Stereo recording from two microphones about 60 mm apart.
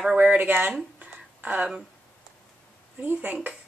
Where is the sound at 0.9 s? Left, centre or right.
Right.